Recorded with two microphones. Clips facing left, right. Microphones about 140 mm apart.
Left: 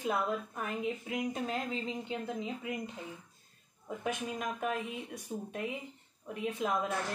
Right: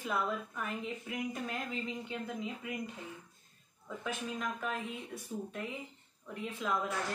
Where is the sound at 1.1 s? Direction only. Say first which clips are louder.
Left 1 dB; 25° left (ahead or behind).